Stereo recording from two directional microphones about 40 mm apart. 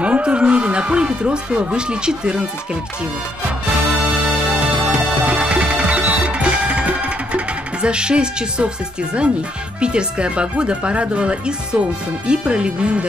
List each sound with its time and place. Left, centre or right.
0.0 s speech: right
4.6 s music: right
9.8 s speech: right